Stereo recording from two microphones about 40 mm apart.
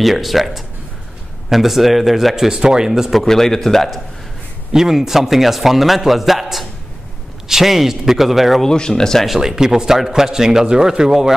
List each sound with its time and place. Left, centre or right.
0.0 s a man's voice: centre
3.2 s a man's voice: centre
4.7 s a man's voice: centre
8.6 s a man's voice: centre
9.2 s a man's voice: centre